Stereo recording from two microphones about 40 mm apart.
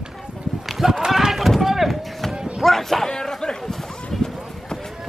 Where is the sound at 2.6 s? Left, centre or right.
Centre.